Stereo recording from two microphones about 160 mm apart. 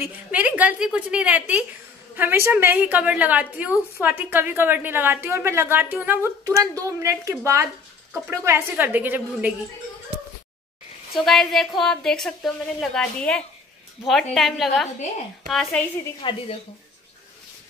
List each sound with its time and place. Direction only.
0.0 s a woman's voice: 10° right (ahead or behind)
11.2 s speech: centre (ahead or behind)
16.2 s a woman's voice: 30° left (ahead or behind)